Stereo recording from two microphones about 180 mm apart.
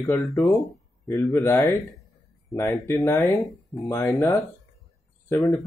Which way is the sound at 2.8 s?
15° left (ahead or behind).